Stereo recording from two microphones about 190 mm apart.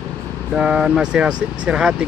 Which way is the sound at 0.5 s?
5° right (ahead or behind).